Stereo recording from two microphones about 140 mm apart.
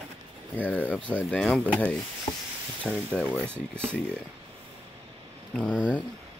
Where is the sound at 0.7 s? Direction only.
10° left (ahead or behind).